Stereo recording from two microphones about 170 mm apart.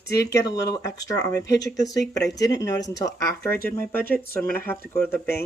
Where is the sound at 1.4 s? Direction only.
90° left.